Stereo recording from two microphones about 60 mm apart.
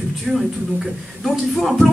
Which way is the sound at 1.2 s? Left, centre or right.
Centre.